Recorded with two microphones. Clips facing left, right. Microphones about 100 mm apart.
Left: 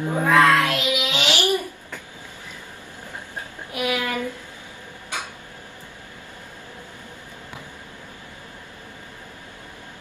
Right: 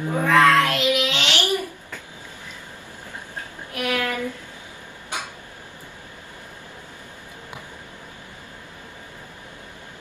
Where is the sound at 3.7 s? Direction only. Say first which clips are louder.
Even; 10° left (ahead or behind).